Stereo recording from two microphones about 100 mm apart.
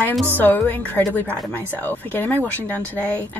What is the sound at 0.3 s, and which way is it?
Speech, 20° left (ahead or behind).